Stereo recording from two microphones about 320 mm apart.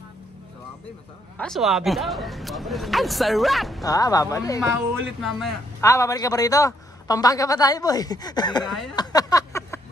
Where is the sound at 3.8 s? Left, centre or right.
Centre.